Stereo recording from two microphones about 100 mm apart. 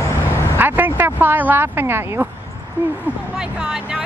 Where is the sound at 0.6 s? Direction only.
20° right (ahead or behind).